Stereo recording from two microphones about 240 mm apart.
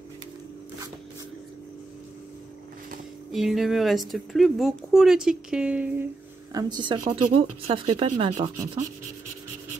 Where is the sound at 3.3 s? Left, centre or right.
Centre.